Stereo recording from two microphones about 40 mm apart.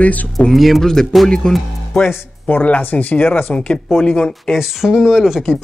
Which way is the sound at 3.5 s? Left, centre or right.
Left.